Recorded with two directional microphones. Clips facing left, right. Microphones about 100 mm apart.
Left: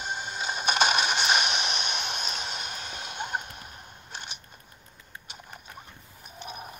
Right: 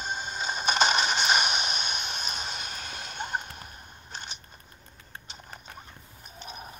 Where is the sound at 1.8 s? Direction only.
55° left (ahead or behind).